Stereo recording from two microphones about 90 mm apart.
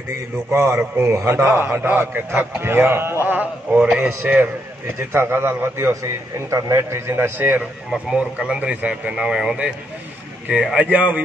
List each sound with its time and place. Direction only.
0.5 s a man's voice: 30° right (ahead or behind)
0.7 s speech: 15° right (ahead or behind)
1.1 s a man's voice: 30° right (ahead or behind)
1.7 s speech: 15° right (ahead or behind)
2.0 s a man's voice: 25° right (ahead or behind)
3.3 s a man's voice: 15° right (ahead or behind)
8.1 s speech: 10° right (ahead or behind)